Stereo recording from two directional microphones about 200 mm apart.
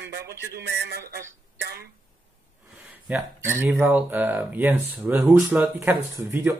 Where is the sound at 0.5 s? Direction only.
55° right (ahead or behind).